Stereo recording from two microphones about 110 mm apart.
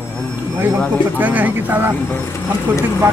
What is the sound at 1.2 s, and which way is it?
Speech, 15° right (ahead or behind).